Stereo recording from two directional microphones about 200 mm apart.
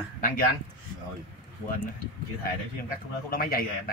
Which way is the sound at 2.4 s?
45° left (ahead or behind).